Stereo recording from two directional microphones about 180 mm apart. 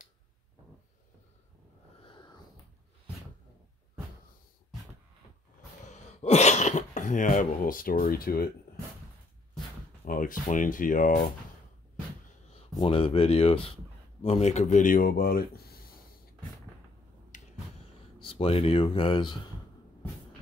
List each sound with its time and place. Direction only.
2.0 s wheeze: 25° left (ahead or behind)
5.9 s a sound: 40° left (ahead or behind); by 8.5 s 55° left (ahead or behind)
10.0 s speech: 50° left (ahead or behind)
12.5 s speech: 30° left (ahead or behind); by 15.6 s 55° left (ahead or behind)
17.3 s finger snapping: 45° left (ahead or behind)
18.2 s speech: 30° left (ahead or behind)